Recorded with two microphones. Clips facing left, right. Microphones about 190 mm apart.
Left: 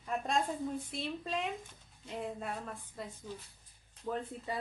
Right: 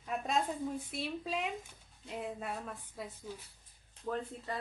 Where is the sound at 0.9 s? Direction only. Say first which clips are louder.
Even; 5° right (ahead or behind).